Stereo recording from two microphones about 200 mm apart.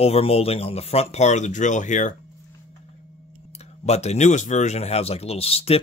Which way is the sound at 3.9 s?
35° left (ahead or behind).